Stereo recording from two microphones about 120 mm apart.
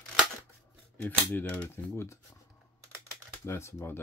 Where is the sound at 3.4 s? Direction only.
20° left (ahead or behind).